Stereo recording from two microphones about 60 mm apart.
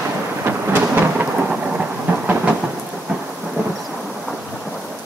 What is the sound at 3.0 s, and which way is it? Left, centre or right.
Thunder, centre.